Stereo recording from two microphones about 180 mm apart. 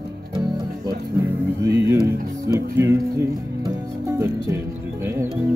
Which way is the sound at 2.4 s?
15° right (ahead or behind).